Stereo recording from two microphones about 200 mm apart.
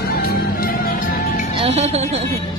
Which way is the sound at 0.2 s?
45° left (ahead or behind).